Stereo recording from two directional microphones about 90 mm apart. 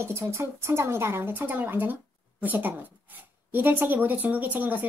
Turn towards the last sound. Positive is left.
turn(degrees=-20)  # may be behind; listen again after turning